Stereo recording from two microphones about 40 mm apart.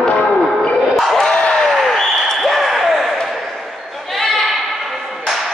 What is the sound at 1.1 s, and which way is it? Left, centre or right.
Crowd, left.